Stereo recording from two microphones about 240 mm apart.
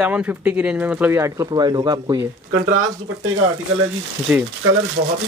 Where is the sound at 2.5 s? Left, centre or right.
Right.